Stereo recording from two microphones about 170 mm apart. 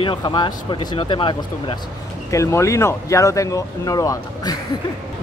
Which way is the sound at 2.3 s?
15° left (ahead or behind).